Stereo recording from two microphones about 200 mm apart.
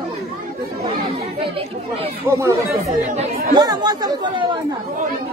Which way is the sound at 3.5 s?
20° right (ahead or behind).